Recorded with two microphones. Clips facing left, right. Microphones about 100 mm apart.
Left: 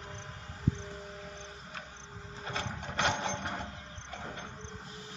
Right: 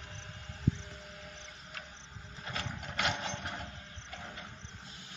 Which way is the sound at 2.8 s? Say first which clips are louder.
Left 4 dB; 35° left (ahead or behind).